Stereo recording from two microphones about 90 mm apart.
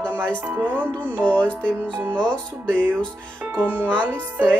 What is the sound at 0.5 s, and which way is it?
Speech, 20° right (ahead or behind).